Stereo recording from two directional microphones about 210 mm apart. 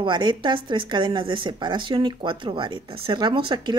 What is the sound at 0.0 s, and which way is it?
A woman's voice, 20° right (ahead or behind).